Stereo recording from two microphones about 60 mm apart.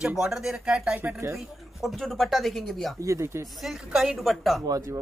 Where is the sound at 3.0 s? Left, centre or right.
Right.